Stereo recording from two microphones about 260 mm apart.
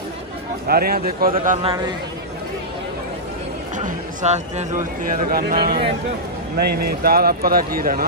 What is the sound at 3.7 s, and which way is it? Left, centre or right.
Speech, right.